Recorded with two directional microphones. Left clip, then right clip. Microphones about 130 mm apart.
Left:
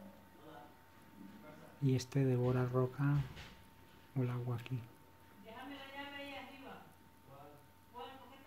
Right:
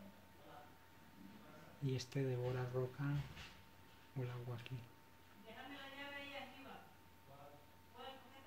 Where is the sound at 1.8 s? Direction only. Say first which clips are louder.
Left 7 dB; 50° left (ahead or behind).